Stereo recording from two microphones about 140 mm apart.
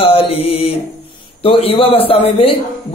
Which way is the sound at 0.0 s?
45° left (ahead or behind).